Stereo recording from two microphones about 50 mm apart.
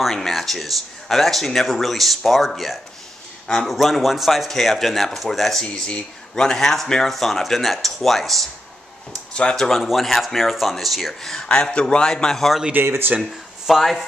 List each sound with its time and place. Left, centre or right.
0.0 s speech: centre
3.4 s a man's voice: centre
3.7 s speech: centre
5.6 s speech: centre
9.3 s speech: centre
9.6 s speech: centre
11.6 s a man's voice: centre
12.8 s speech: right
13.2 s speech: centre